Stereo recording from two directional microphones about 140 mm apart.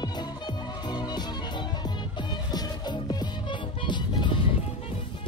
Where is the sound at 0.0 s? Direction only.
30° left (ahead or behind).